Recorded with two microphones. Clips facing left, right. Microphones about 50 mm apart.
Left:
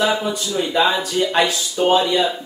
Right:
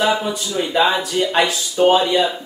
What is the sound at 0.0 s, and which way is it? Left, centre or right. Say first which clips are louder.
Speech: right 1 dB; centre.